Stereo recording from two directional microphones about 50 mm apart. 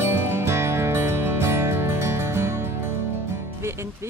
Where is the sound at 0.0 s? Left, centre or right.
Right.